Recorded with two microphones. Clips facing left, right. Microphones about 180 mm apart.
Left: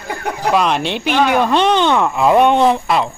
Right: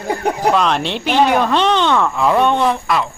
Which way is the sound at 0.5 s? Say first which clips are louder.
Left 1 dB; 5° left (ahead or behind).